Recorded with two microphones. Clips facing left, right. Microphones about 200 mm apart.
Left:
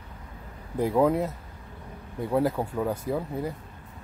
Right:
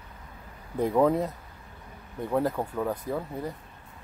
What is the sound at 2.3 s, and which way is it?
Speech, 5° left (ahead or behind).